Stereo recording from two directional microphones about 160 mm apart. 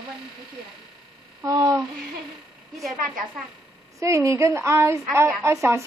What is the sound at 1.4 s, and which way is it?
Speech, 20° right (ahead or behind).